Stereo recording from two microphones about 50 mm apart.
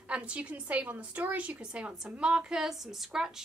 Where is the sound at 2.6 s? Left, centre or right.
Centre.